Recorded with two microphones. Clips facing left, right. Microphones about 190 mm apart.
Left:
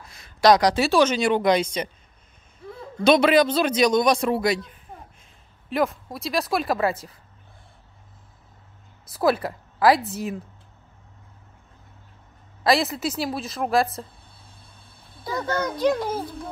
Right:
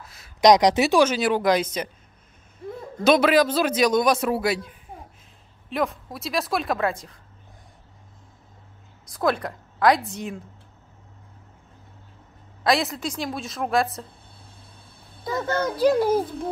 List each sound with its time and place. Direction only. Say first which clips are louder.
0.0 s a sound: right 1 dB; 5° right (ahead or behind)
0.4 s speech: right 1 dB; 20° right (ahead or behind)
1.0 s a man's voice: left 1 dB; 5° right (ahead or behind)
3.0 s a man's voice: left 1 dB; 5° right (ahead or behind)
9.0 s a woman's voice: left 2 dB; 5° left (ahead or behind)
12.6 s a man's voice: left 2 dB; centre (ahead or behind)
15.7 s a child's voice: right 6 dB; 5° right (ahead or behind)